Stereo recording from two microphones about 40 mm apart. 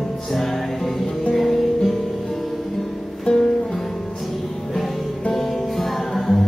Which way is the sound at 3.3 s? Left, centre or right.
Left.